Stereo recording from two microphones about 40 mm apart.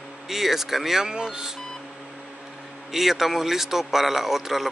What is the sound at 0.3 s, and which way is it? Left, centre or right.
Speech, centre.